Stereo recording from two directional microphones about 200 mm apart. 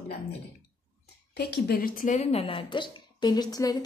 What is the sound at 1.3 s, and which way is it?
A woman's voice, 50° left (ahead or behind).